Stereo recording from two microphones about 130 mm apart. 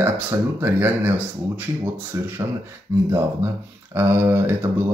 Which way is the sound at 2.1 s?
20° right (ahead or behind).